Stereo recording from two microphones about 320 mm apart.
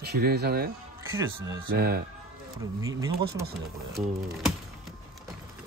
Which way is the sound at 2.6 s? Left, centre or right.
Centre.